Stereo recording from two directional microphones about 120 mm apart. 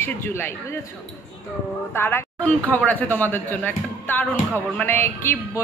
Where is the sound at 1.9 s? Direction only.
20° left (ahead or behind).